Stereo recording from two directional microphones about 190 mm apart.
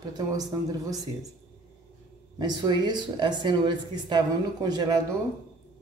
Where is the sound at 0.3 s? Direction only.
20° right (ahead or behind).